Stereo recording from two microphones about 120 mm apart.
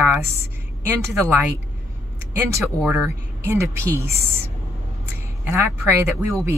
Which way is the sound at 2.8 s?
15° right (ahead or behind).